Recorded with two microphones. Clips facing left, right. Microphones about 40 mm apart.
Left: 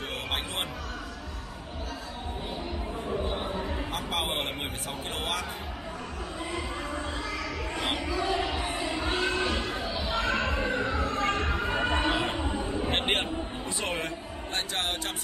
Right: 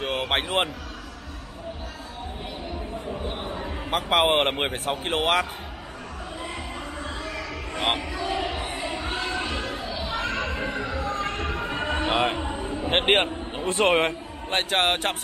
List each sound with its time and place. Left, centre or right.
0.0 s a sound: right
3.9 s a man's voice: right
7.7 s music: right
9.6 s a sound: right
10.4 s music: right
10.8 s music: left
11.6 s music: right
12.4 s a sound: right
12.9 s a man's voice: right